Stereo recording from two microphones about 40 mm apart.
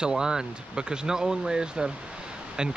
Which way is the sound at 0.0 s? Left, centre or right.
Centre.